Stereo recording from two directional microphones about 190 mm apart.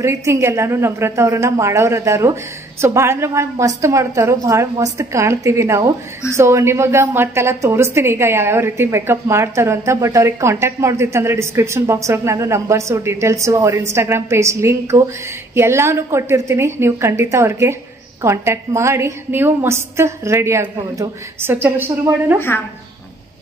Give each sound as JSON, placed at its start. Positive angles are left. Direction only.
{"t": 0.0, "sound": "a woman's voice", "side_deg": -15}